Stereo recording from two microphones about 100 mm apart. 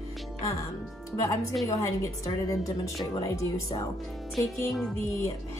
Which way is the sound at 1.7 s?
35° left (ahead or behind).